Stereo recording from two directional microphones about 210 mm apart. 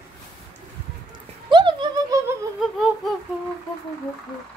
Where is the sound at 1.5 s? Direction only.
20° right (ahead or behind).